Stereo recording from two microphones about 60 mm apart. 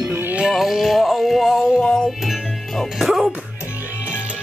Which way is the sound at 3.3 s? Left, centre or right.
Centre.